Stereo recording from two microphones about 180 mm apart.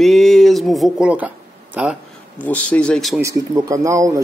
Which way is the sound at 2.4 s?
10° left (ahead or behind).